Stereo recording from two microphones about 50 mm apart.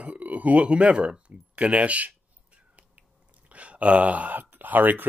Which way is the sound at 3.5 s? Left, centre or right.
Right.